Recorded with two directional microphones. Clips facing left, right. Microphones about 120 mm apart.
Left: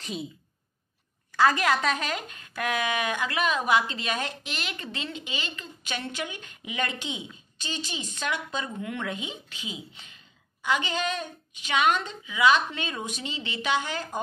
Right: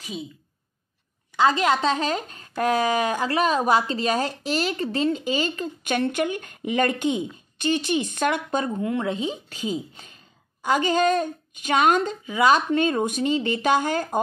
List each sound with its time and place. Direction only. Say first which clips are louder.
0.0 s a woman's voice: right 1 dB; centre (ahead or behind)
1.3 s speech: right 3 dB; 20° right (ahead or behind); by 8.7 s 50° right (ahead or behind)
8.7 s a woman's voice: right 8 dB; 30° right (ahead or behind); by 14.2 s 45° right (ahead or behind)